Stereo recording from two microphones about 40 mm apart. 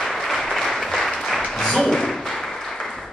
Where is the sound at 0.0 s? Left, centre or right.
Centre.